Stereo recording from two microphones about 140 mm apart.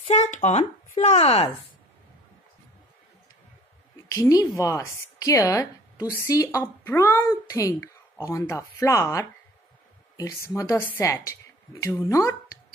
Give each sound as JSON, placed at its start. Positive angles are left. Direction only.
{"t": 0.0, "sound": "speech", "side_deg": 50}
{"t": 4.1, "sound": "a woman's voice", "side_deg": 25}